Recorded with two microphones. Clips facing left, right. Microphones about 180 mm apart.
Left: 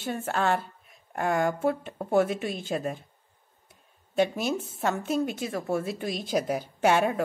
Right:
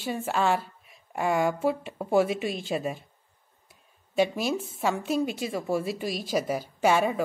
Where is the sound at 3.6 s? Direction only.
Centre (ahead or behind).